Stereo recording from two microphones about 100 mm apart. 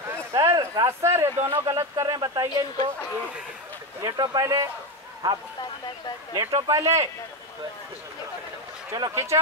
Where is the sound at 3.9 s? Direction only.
40° right (ahead or behind).